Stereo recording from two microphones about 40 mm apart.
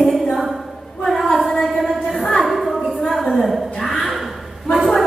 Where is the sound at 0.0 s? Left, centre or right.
Centre.